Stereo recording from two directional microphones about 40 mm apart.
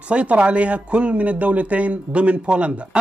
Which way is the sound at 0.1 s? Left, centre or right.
Right.